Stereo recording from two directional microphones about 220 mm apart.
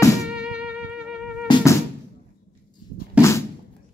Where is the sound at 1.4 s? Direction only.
15° left (ahead or behind).